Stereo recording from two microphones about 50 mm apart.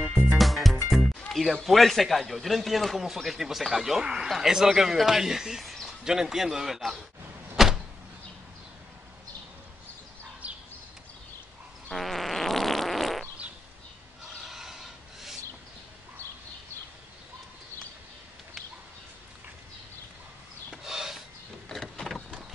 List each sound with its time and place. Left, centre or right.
0.3 s music: centre
0.8 s a man's voice: centre
7.5 s power windows: centre
10.4 s a sound: right
11.9 s fart: centre
14.2 s rub: centre
20.7 s rub: centre
21.7 s vehicle: centre